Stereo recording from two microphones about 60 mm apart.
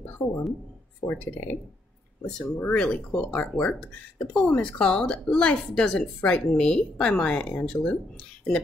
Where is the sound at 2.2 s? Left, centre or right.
Centre.